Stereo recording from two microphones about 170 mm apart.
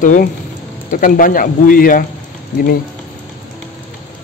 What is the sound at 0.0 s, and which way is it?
Speech, 50° left (ahead or behind).